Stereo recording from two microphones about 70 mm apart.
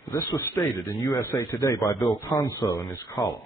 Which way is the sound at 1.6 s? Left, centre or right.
Left.